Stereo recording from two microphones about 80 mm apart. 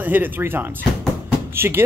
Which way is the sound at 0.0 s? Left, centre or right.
Right.